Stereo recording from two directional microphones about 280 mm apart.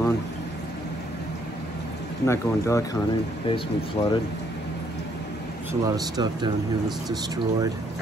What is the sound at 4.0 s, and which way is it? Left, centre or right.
Speech, centre.